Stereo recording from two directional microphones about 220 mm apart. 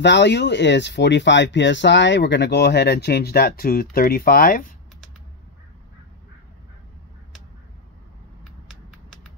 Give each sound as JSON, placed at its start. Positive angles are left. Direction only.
{"t": 0.0, "sound": "speech", "side_deg": 50}